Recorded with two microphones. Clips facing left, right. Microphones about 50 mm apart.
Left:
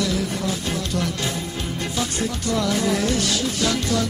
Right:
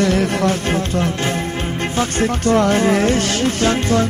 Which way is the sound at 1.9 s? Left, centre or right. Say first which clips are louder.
Right 8 dB; right.